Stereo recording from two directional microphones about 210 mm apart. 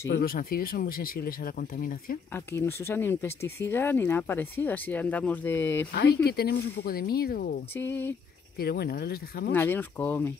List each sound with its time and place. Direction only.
0.1 s speech: 45° left (ahead or behind)
2.3 s speech: 10° left (ahead or behind)
5.9 s speech: 50° left (ahead or behind)
7.7 s speech: 10° left (ahead or behind)
8.5 s speech: 50° left (ahead or behind)
9.5 s speech: 10° left (ahead or behind)